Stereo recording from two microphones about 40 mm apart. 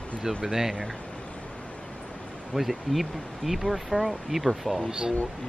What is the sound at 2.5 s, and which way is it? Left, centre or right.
Speech, centre.